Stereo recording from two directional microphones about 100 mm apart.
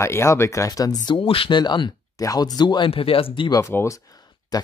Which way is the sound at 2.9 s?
70° left (ahead or behind).